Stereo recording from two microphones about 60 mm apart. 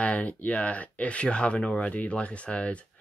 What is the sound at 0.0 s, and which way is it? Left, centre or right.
Speech, left.